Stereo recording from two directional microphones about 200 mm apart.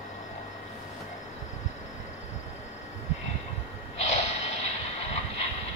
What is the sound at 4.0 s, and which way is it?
Snort, 35° left (ahead or behind).